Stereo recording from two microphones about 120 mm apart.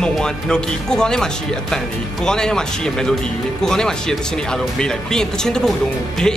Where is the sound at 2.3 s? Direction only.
5° left (ahead or behind).